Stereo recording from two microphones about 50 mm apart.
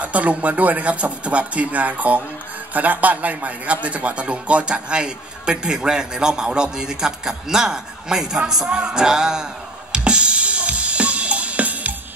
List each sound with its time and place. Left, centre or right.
0.0 s a man's voice: right; by 9.5 s centre
9.9 s drum: centre